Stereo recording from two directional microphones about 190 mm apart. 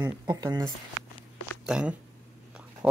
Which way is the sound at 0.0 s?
20° right (ahead or behind).